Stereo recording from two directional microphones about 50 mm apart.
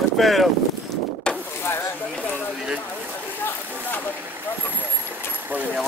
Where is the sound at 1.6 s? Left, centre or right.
Left.